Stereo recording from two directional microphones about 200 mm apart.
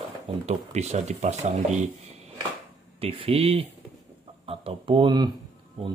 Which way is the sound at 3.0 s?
30° right (ahead or behind).